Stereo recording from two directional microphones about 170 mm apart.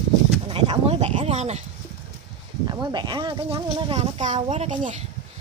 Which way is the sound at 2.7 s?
25° right (ahead or behind).